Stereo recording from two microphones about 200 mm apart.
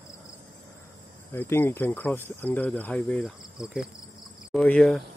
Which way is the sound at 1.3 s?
10° left (ahead or behind).